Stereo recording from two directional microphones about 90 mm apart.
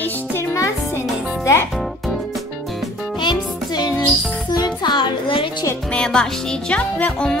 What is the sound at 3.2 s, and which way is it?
Music, 50° left (ahead or behind).